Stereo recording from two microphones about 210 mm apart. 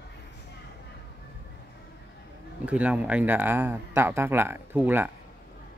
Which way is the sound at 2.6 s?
5° right (ahead or behind).